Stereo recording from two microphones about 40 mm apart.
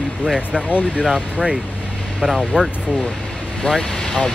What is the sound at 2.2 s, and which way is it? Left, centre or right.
Speech, centre.